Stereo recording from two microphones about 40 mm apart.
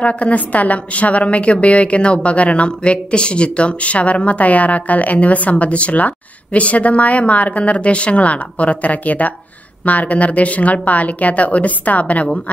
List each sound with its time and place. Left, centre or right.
0.0 s speech: left